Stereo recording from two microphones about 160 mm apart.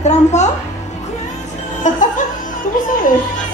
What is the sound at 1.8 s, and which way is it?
Laughter, 55° left (ahead or behind).